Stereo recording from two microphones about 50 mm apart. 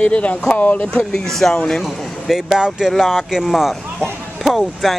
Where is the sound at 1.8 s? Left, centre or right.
Centre.